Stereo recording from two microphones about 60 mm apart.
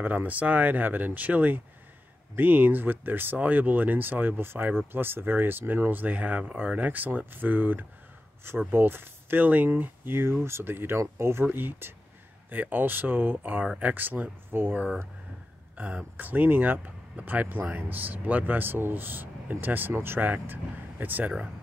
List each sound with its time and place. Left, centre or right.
0.0 s speech: right
11.0 s speech: right
11.4 s speech: right